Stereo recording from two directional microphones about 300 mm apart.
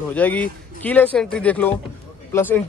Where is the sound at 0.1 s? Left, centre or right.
Centre.